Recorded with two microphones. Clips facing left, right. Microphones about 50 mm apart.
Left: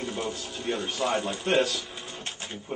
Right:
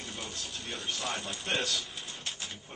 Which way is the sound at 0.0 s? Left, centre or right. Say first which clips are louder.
Left 9 dB; centre.